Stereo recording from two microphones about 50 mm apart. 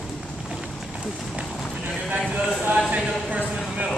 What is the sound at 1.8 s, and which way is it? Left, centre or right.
Clip-clop, right.